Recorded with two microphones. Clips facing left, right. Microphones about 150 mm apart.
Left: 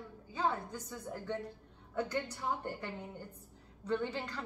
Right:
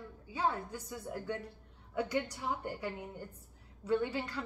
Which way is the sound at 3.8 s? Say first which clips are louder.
Right 3 dB; 10° right (ahead or behind).